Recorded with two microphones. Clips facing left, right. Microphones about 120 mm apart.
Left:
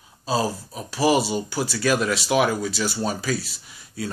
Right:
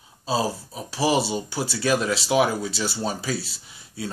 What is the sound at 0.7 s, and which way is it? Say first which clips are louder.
Speech: left 2 dB; 30° right (ahead or behind).